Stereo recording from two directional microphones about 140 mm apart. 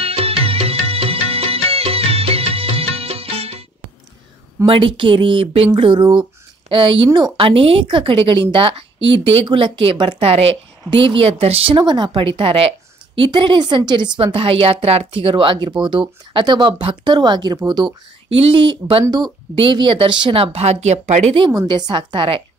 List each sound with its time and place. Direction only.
0.0 s music: 45° right (ahead or behind)
4.6 s a woman's voice: 40° right (ahead or behind)
21.6 s a woman's voice: 35° right (ahead or behind)